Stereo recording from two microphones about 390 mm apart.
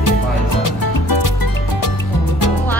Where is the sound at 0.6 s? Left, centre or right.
Left.